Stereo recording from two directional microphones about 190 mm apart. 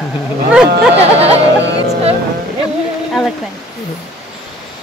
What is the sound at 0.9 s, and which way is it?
Music, 30° right (ahead or behind).